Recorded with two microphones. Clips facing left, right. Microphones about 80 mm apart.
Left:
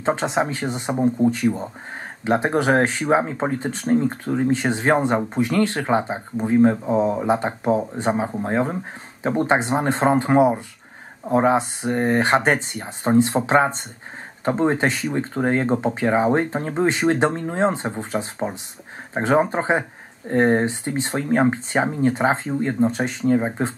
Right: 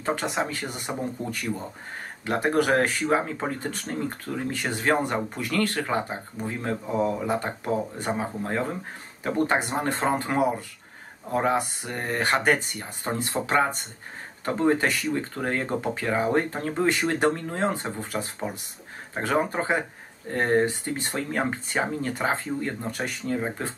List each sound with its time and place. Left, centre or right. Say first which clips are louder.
0.0 s speech: left 6 dB; left